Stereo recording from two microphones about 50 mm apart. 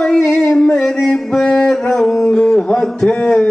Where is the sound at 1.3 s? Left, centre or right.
Centre.